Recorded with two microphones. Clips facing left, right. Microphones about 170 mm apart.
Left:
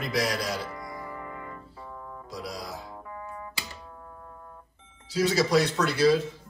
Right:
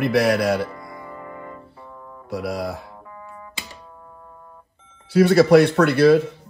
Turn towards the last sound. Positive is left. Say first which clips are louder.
# right 8 dB
turn(degrees=-60)  # may be behind; listen again after turning